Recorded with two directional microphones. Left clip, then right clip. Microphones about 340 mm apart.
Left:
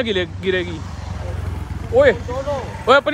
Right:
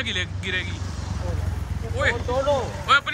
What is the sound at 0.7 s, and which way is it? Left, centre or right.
Vehicle, left.